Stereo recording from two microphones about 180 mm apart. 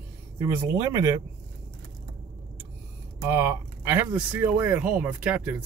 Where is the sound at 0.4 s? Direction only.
15° right (ahead or behind).